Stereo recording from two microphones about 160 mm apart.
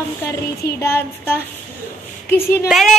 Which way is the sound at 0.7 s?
15° left (ahead or behind).